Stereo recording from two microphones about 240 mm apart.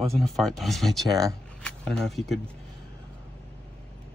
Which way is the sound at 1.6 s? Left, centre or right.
Centre.